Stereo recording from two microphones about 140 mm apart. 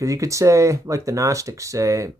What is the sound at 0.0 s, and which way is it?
Speech, 20° right (ahead or behind).